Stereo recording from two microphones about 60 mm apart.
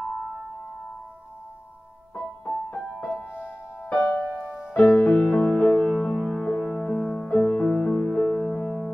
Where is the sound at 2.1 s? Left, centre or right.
Centre.